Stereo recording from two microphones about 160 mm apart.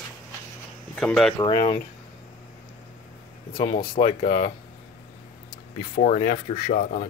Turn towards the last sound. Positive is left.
turn(degrees=50)  # may be behind; listen again after turning